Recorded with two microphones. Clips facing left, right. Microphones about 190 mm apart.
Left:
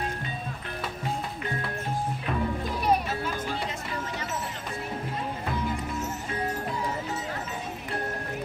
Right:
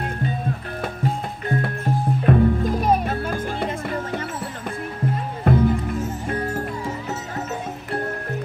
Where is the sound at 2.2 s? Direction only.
45° right (ahead or behind).